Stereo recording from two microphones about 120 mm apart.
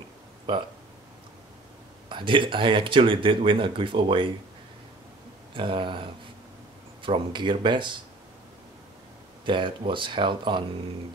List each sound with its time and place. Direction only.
2.0 s speech: 45° right (ahead or behind)
5.5 s speech: 45° right (ahead or behind)
9.4 s speech: 45° right (ahead or behind)